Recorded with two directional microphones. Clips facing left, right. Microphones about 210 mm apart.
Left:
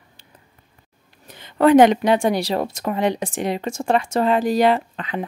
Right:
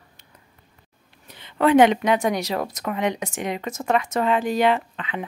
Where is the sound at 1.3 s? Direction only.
40° left (ahead or behind).